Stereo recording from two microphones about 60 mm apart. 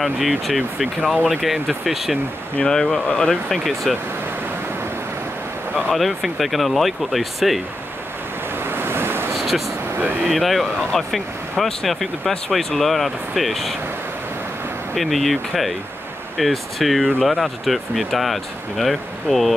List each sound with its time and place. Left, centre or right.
0.0 s speech: centre
2.6 s speech: centre
5.9 s speech: centre
8.6 s waves: right
9.3 s a sound: centre
10.2 s speech: centre
15.0 s speech: centre